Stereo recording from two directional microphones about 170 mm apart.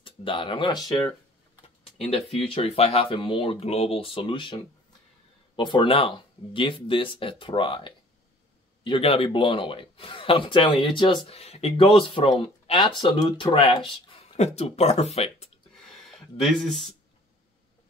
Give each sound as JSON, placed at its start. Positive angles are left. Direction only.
{"t": 0.0, "sound": "a man's voice", "side_deg": 30}
{"t": 5.6, "sound": "a man's voice", "side_deg": 30}
{"t": 16.0, "sound": "a sound", "side_deg": 0}
{"t": 16.5, "sound": "speech", "side_deg": 0}